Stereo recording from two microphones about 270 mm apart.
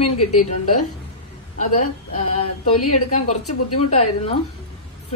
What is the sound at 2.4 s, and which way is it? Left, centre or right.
A woman's voice, left.